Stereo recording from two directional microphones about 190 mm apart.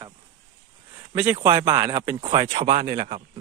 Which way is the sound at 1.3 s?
25° right (ahead or behind).